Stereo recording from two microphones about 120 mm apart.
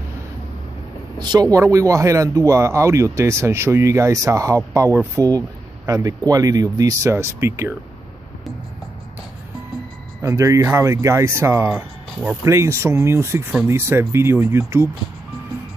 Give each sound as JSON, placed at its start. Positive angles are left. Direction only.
{"t": 1.2, "sound": "speech", "side_deg": -35}
{"t": 10.2, "sound": "speech", "side_deg": -25}
{"t": 11.7, "sound": "speech", "side_deg": -5}
{"t": 12.4, "sound": "speech", "side_deg": -25}